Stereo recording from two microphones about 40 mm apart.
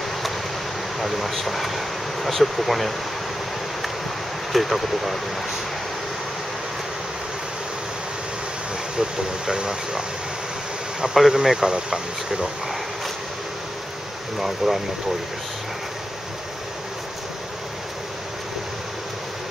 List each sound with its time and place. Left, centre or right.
0.9 s speech: centre
4.5 s speech: centre
9.5 s speech: centre
11.1 s speech: centre
14.4 s speech: centre